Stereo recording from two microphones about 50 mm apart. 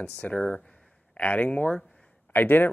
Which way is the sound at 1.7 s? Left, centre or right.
Centre.